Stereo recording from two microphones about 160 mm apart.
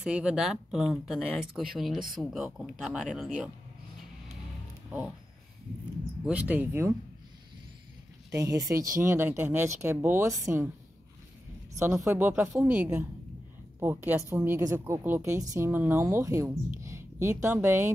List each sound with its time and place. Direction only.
0.0 s speech: 5° right (ahead or behind)
6.2 s speech: 10° right (ahead or behind)
8.3 s speech: 20° right (ahead or behind)
11.8 s speech: 15° right (ahead or behind)